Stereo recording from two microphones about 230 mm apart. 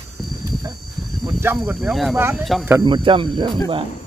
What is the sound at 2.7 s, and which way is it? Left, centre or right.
Speech, centre.